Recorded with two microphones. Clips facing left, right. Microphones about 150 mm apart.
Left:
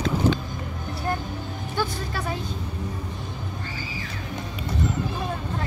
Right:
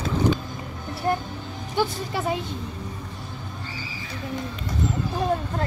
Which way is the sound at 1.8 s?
20° right (ahead or behind).